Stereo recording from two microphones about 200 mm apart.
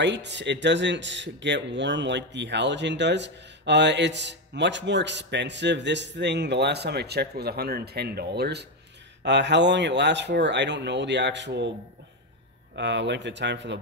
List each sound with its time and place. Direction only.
0.0 s speech: 60° right (ahead or behind)
12.7 s speech: 60° right (ahead or behind)